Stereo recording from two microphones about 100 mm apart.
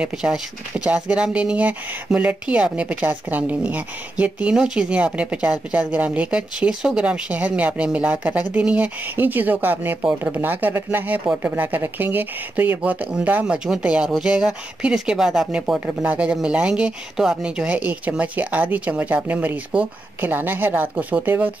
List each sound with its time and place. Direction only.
0.0 s speech: 10° right (ahead or behind)
16.1 s speech: 10° right (ahead or behind)